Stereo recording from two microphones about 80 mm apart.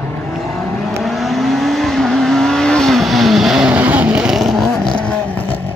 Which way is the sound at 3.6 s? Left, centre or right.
Centre.